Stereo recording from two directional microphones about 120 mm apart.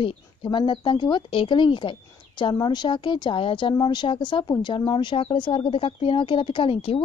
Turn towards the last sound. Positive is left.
turn(degrees=50)  # may be behind; listen again after turning